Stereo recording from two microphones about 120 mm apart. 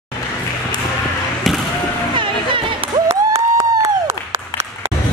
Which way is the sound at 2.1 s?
45° right (ahead or behind).